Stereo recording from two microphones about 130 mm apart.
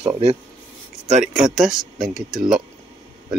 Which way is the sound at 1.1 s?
70° right (ahead or behind).